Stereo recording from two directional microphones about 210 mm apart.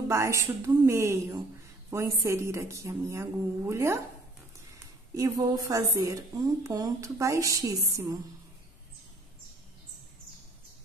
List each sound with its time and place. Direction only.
0.1 s a woman's voice: 15° right (ahead or behind)
5.1 s a woman's voice: 15° right (ahead or behind)